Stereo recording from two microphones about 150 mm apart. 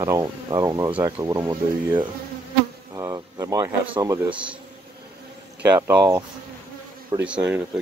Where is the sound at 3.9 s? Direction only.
20° right (ahead or behind).